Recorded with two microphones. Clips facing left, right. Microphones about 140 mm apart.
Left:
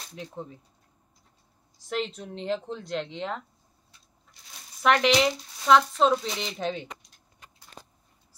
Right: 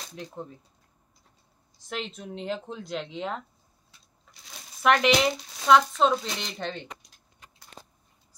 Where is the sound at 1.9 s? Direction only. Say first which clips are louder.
Left 4 dB; centre (ahead or behind).